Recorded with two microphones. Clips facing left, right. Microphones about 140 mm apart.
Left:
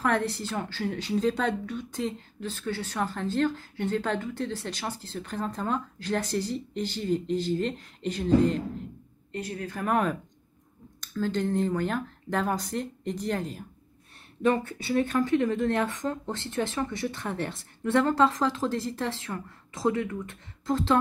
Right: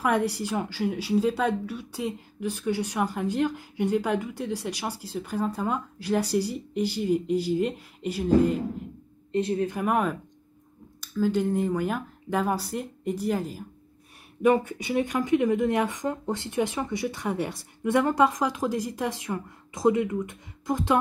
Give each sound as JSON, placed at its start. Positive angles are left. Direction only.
{"t": 0.0, "sound": "a woman's voice", "side_deg": -10}
{"t": 9.3, "sound": "a woman's voice", "side_deg": -25}
{"t": 9.8, "sound": "a woman's voice", "side_deg": -10}